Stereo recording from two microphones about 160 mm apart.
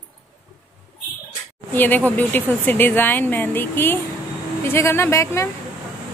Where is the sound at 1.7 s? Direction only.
10° left (ahead or behind).